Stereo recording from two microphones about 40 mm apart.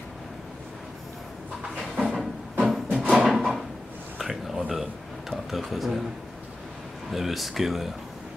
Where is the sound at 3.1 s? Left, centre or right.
Centre.